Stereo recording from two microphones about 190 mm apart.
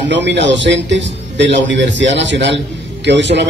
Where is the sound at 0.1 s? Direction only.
70° right (ahead or behind).